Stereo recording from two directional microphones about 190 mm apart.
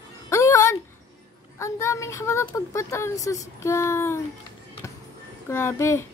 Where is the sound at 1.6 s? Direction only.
15° left (ahead or behind).